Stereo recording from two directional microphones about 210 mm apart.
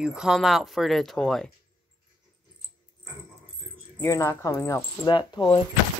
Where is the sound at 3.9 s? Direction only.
15° left (ahead or behind).